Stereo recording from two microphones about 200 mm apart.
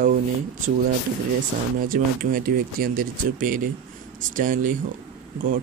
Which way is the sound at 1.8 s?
45° right (ahead or behind).